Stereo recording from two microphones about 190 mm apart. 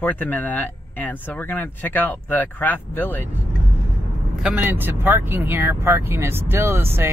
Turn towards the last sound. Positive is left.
turn(degrees=-10)  # may be behind; listen again after turning